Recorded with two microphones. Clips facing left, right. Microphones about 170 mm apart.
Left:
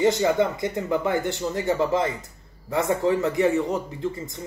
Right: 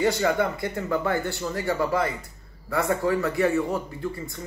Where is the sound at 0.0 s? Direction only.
20° left (ahead or behind).